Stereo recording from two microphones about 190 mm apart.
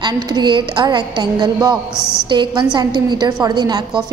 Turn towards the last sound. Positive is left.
turn(degrees=-25)  # may be behind; listen again after turning